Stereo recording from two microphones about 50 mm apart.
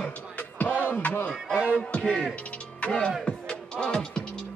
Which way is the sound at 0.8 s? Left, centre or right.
Left.